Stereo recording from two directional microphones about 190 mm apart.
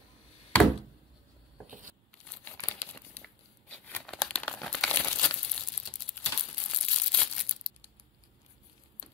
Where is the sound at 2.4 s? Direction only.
10° left (ahead or behind).